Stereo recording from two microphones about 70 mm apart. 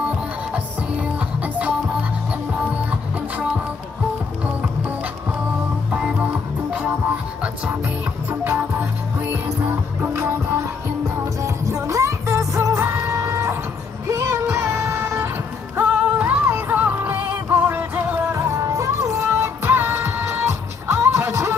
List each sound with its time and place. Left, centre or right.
1.0 s music: right
2.7 s music: centre
5.9 s music: centre
8.3 s music: right
11.4 s music: right
15.8 s music: centre
16.4 s music: right
18.4 s music: right